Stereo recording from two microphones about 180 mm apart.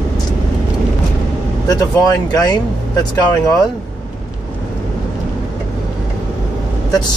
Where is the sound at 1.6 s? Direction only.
20° left (ahead or behind).